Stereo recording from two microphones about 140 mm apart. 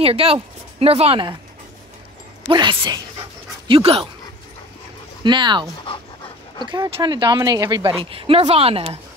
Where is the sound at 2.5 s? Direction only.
35° right (ahead or behind).